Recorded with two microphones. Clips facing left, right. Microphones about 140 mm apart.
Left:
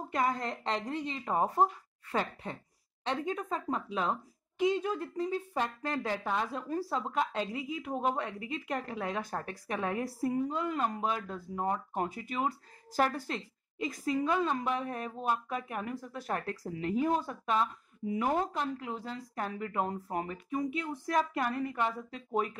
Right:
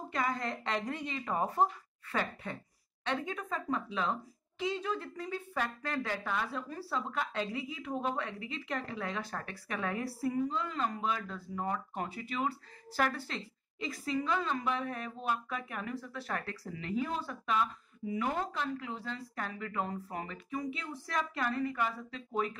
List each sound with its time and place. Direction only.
0.1 s a woman's voice: 40° left (ahead or behind)
6.4 s speech: 45° left (ahead or behind)
11.5 s a woman's voice: 30° left (ahead or behind)
11.9 s speech: 45° left (ahead or behind)
18.0 s speech: 5° right (ahead or behind)
18.5 s speech: 45° left (ahead or behind)